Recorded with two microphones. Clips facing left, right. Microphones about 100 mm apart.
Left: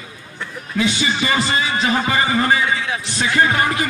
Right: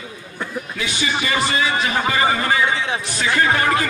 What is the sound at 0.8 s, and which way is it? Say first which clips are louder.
Speech: left 5 dB; 25° left (ahead or behind).